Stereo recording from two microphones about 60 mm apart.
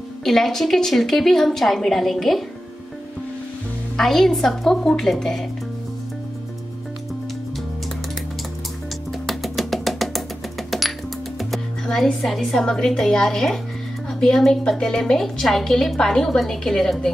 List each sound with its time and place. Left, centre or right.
0.2 s a woman's voice: centre
4.0 s a woman's voice: centre
9.2 s music: centre
11.3 s a woman's voice: centre